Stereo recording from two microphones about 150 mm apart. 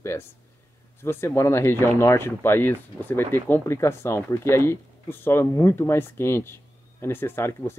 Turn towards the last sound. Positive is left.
turn(degrees=15)  # may be behind; listen again after turning